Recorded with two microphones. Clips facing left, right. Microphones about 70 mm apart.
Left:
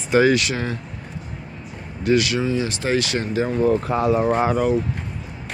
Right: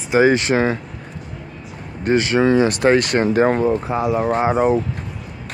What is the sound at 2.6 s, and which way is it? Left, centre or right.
Speech, right.